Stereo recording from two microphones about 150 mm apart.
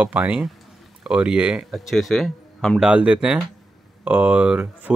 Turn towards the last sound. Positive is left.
turn(degrees=-10)  # may be behind; listen again after turning